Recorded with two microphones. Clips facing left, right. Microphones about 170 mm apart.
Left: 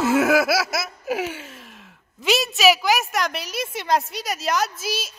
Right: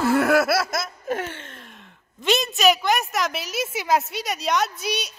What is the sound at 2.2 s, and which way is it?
A woman's voice, centre (ahead or behind).